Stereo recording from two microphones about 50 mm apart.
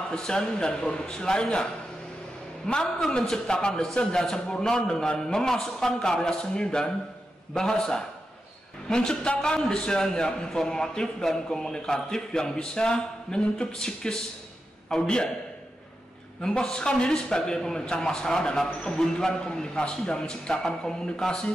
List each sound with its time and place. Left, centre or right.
0.1 s a man's voice: centre
16.4 s a man's voice: centre